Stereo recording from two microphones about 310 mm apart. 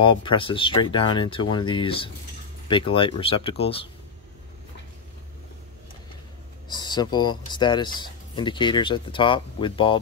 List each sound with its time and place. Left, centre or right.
0.0 s speech: centre
6.7 s speech: centre